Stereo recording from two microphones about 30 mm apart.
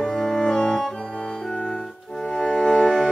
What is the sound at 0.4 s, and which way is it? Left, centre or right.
Music, left.